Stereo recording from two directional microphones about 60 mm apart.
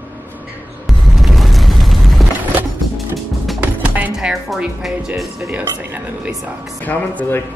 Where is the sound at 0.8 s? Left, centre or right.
Centre.